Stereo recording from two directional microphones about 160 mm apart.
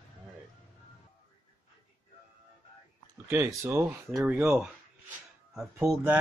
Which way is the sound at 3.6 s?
15° right (ahead or behind).